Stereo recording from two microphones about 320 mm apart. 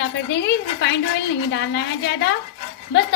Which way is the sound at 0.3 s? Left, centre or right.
Left.